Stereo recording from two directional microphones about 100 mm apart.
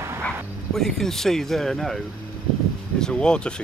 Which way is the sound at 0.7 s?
5° left (ahead or behind).